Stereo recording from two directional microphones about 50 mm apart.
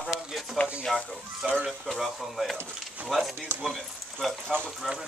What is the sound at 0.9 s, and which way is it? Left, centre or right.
Speech, centre.